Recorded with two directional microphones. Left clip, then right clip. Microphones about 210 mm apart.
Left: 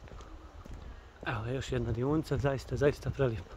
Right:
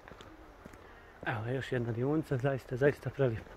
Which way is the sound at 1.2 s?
15° left (ahead or behind).